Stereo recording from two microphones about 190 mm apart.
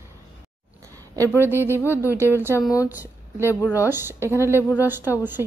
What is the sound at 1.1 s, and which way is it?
A woman's voice, 15° right (ahead or behind).